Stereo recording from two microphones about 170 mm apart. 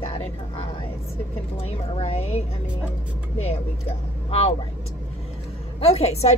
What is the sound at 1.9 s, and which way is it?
Speech, 40° left (ahead or behind).